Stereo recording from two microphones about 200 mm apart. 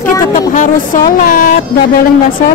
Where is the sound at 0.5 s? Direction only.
40° left (ahead or behind).